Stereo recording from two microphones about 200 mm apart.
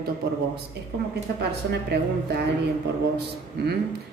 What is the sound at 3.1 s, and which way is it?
Speech, 55° right (ahead or behind).